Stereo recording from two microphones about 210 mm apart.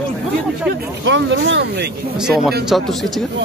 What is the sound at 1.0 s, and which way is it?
Speech, 60° right (ahead or behind).